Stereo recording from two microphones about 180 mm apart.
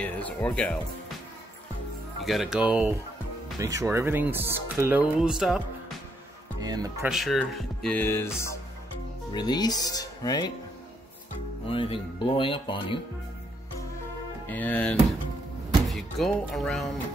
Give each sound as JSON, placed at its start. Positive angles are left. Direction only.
{"t": 0.0, "sound": "speech", "side_deg": 10}
{"t": 2.2, "sound": "speech", "side_deg": 0}
{"t": 3.5, "sound": "speech", "side_deg": -20}
{"t": 6.6, "sound": "speech", "side_deg": -20}
{"t": 7.1, "sound": "speech", "side_deg": 0}
{"t": 9.3, "sound": "speech", "side_deg": 25}
{"t": 11.6, "sound": "speech", "side_deg": 30}
{"t": 14.5, "sound": "speech", "side_deg": 10}